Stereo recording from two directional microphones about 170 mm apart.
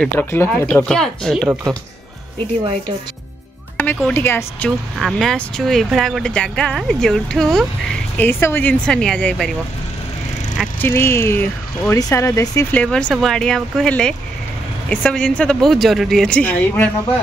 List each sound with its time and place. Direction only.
0.0 s speech: 10° left (ahead or behind)
0.8 s speech: 5° left (ahead or behind)
3.7 s speech: 10° left (ahead or behind)
8.2 s speech: 15° left (ahead or behind)
10.8 s speech: 15° left (ahead or behind)
12.8 s speech: 5° left (ahead or behind)